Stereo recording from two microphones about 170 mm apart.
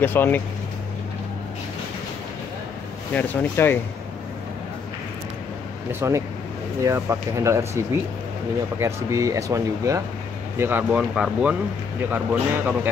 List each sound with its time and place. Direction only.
0.0 s speech: 10° left (ahead or behind)
3.1 s speech: 10° left (ahead or behind)
5.9 s speech: 15° right (ahead or behind)